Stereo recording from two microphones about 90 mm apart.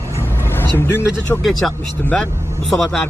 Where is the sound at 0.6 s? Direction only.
25° left (ahead or behind).